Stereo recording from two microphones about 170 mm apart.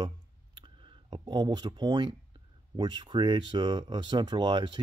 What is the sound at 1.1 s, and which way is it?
Speech, 25° right (ahead or behind).